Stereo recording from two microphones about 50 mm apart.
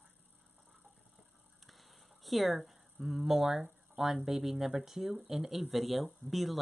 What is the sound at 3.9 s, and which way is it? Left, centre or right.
Speech, centre.